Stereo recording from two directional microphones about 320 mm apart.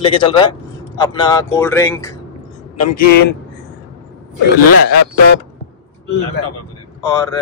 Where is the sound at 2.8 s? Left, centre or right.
Left.